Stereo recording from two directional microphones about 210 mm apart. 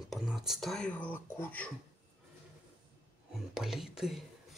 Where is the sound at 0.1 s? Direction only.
Centre (ahead or behind).